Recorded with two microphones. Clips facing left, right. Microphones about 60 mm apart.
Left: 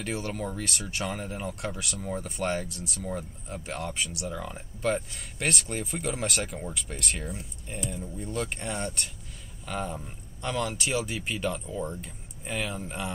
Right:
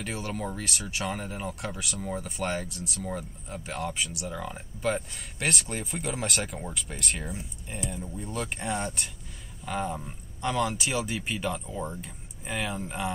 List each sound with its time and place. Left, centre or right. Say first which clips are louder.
0.0 s speech: left 1 dB; centre